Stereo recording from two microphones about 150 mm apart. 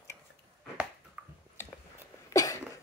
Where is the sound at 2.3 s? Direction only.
20° left (ahead or behind).